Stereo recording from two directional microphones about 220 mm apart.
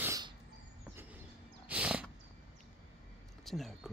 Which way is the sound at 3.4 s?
Centre (ahead or behind).